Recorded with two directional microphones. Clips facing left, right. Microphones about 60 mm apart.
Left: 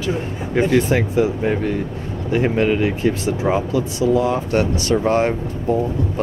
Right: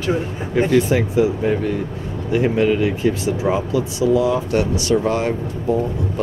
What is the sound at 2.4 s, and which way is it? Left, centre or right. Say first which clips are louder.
Speech: right 1 dB; left.